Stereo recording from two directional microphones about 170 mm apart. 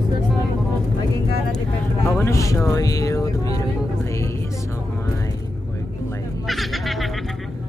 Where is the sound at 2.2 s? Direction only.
20° left (ahead or behind).